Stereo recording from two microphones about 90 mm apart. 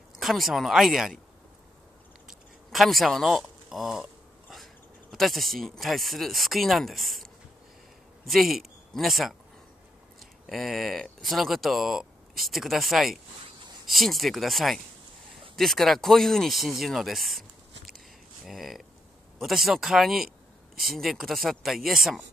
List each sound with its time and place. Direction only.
0.2 s speech: centre (ahead or behind)
2.2 s a sound: centre (ahead or behind)
5.1 s speech: centre (ahead or behind)
8.3 s speech: centre (ahead or behind)
10.4 s speech: centre (ahead or behind)
18.4 s speech: centre (ahead or behind)